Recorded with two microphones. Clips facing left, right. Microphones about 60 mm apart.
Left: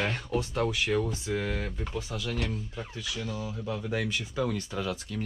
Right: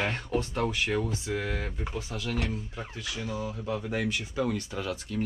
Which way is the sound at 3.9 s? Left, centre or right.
Right.